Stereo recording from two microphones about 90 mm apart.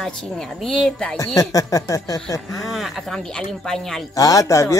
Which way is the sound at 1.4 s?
40° left (ahead or behind).